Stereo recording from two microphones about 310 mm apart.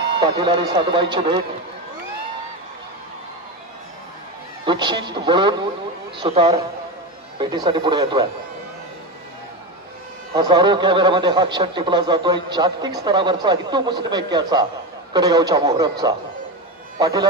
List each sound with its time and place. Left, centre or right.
0.2 s speech: centre
4.6 s speech: centre
10.3 s speech: centre